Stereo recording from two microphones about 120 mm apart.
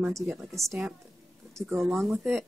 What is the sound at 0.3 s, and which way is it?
Speech, centre (ahead or behind).